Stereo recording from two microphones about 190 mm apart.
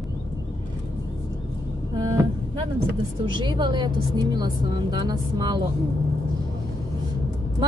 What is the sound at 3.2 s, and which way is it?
Speech, 25° right (ahead or behind).